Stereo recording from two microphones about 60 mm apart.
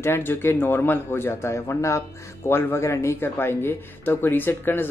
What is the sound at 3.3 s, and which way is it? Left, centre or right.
Speech, left.